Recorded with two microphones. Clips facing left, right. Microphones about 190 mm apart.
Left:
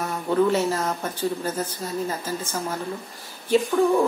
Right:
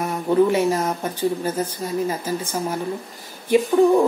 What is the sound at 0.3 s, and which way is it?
Speech, 15° right (ahead or behind).